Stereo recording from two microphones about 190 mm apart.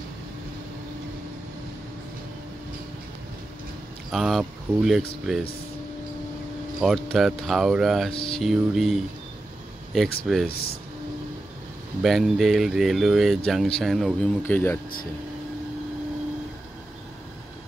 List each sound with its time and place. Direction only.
4.1 s speech: centre (ahead or behind)
6.8 s speech: centre (ahead or behind)
8.1 s speech: 30° left (ahead or behind)
8.4 s speech: centre (ahead or behind)
10.2 s speech: centre (ahead or behind)
10.5 s speech: 55° left (ahead or behind)
12.0 s speech: centre (ahead or behind)
14.4 s speech: 10° left (ahead or behind)